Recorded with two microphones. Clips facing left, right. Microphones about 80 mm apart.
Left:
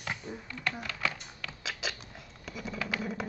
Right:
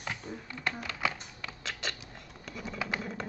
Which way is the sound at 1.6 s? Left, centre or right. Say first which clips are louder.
Left 1 dB; centre.